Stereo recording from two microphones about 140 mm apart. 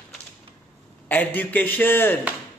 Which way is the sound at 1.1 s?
10° left (ahead or behind).